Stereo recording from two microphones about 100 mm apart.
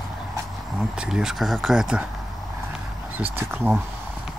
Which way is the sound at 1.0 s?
5° right (ahead or behind).